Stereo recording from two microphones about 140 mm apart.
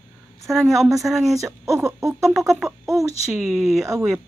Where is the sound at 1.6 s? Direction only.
20° right (ahead or behind).